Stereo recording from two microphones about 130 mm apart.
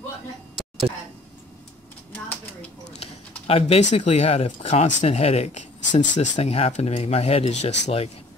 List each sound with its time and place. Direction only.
3.0 s speech: 50° left (ahead or behind)